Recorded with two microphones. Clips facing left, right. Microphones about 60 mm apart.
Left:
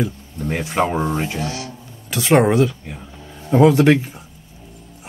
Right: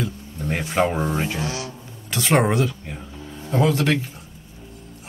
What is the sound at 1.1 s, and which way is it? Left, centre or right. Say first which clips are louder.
Speech: left 2 dB; centre.